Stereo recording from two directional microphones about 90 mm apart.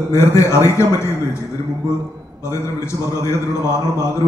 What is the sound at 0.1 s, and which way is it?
A man's voice, 35° left (ahead or behind).